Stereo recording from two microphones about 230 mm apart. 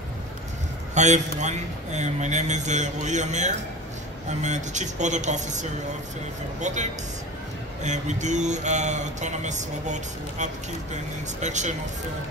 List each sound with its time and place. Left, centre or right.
0.9 s mantra: right